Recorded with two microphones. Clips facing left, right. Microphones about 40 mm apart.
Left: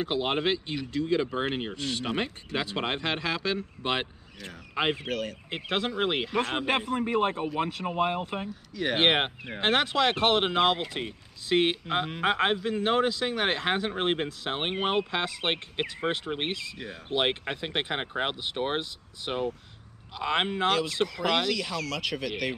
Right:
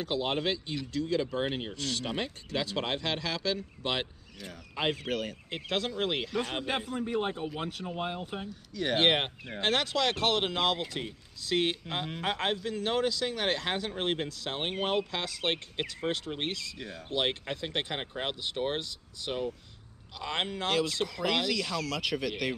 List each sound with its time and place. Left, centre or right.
0.0 s speech: left
5.0 s speech: centre
5.5 s speech: left
6.6 s speech: left
8.7 s speech: centre
16.7 s speech: centre
17.1 s speech: left
20.6 s speech: centre